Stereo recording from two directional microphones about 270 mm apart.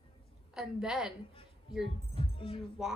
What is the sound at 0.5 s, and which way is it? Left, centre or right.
Speech, centre.